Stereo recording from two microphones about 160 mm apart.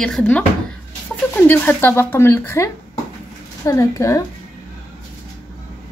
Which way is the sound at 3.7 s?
20° left (ahead or behind).